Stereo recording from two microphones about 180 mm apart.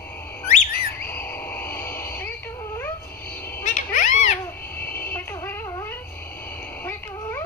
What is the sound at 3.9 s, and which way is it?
Babbling, 45° left (ahead or behind).